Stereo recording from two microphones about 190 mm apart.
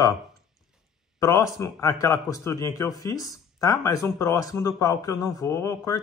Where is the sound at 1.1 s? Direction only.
15° left (ahead or behind).